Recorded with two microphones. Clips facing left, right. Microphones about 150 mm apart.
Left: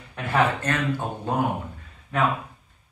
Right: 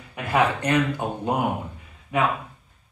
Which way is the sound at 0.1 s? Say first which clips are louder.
Right 1 dB; 10° right (ahead or behind).